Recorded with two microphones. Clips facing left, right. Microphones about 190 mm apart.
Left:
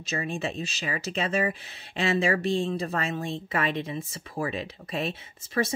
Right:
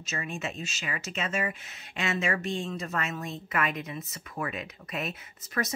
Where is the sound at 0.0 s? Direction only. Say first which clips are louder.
Left 5 dB; 35° left (ahead or behind).